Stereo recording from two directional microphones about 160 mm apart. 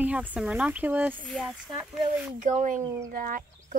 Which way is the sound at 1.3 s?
5° left (ahead or behind).